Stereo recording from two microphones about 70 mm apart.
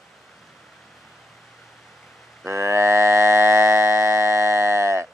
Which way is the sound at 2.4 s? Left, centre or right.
Right.